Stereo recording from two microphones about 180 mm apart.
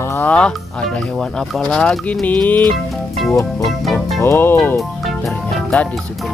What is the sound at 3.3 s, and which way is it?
Music, 20° left (ahead or behind).